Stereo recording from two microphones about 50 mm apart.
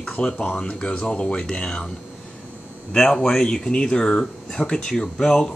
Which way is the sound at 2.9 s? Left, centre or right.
Centre.